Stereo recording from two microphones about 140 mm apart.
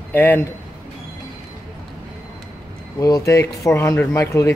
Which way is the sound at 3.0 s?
25° left (ahead or behind).